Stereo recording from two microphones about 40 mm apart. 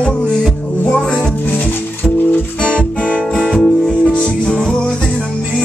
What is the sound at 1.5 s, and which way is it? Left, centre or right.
Music, left.